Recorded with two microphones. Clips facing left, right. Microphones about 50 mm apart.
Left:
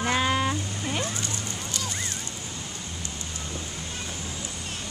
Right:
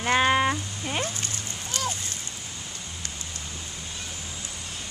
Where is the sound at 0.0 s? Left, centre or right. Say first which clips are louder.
Right 3 dB; right.